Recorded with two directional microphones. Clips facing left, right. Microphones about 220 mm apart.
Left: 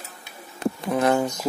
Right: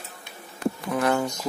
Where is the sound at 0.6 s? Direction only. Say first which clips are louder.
Left 2 dB; 25° left (ahead or behind).